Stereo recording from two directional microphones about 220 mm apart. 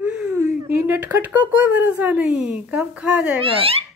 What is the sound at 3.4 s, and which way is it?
Speech, 25° right (ahead or behind).